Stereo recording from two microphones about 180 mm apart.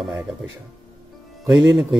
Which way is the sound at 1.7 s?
Centre (ahead or behind).